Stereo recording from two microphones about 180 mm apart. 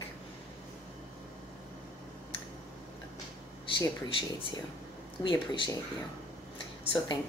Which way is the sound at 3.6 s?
30° left (ahead or behind).